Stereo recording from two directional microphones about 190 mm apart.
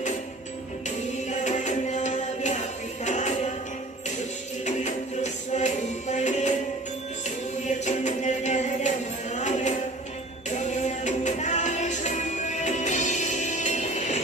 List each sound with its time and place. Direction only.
0.8 s music: 40° left (ahead or behind)
4.6 s music: 40° left (ahead or behind)